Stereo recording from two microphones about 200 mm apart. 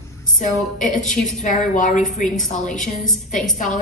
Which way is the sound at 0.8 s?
40° left (ahead or behind).